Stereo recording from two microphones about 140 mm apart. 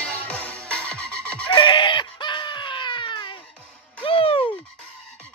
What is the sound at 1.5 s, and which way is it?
Screaming, 35° left (ahead or behind).